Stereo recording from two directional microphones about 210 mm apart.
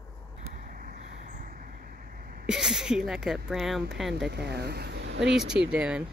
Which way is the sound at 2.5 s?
5° right (ahead or behind).